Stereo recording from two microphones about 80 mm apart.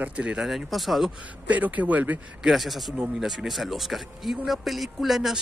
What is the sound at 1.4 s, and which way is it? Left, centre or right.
Speech, centre.